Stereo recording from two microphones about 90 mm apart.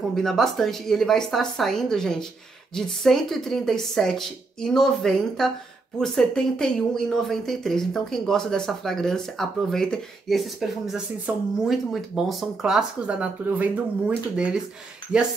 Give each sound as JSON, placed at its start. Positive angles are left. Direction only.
{"t": 0.1, "sound": "speech", "side_deg": 5}
{"t": 11.3, "sound": "speech", "side_deg": -20}
{"t": 11.6, "sound": "speech", "side_deg": 0}